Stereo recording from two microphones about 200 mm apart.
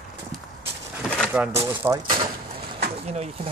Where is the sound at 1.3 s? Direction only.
5° right (ahead or behind).